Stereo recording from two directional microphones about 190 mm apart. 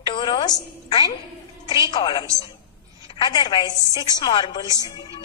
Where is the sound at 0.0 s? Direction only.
25° left (ahead or behind).